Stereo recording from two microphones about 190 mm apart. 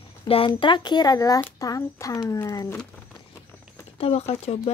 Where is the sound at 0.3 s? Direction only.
25° left (ahead or behind).